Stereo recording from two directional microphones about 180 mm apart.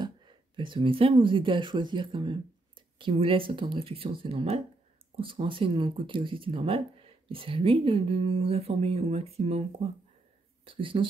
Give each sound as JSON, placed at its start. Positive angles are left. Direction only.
{"t": 0.0, "sound": "speech", "side_deg": -25}